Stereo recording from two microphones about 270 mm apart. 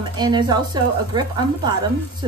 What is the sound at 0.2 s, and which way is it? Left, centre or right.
A woman's voice, centre.